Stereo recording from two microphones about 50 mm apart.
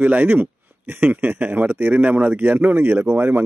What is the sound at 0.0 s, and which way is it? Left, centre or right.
Speech, right.